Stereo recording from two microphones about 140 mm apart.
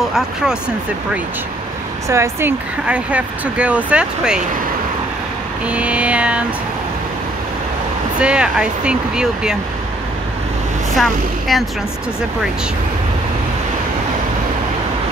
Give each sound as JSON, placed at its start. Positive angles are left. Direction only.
{"t": 2.0, "sound": "speech", "side_deg": -20}
{"t": 2.9, "sound": "speech", "side_deg": -10}
{"t": 5.7, "sound": "speech", "side_deg": -10}
{"t": 8.2, "sound": "speech", "side_deg": -5}
{"t": 11.0, "sound": "speech", "side_deg": 0}